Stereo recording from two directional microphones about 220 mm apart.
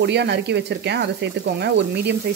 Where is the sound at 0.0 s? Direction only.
50° right (ahead or behind).